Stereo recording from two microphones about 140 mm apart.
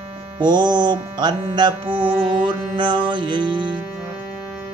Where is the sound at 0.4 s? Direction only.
30° right (ahead or behind).